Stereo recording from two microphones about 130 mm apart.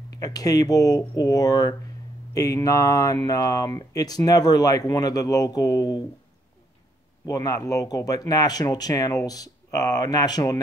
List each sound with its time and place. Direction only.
0.2 s speech: 30° left (ahead or behind)
7.2 s speech: 25° left (ahead or behind)